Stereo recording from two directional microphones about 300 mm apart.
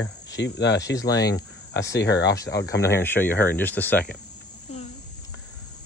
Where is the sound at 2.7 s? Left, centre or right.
Centre.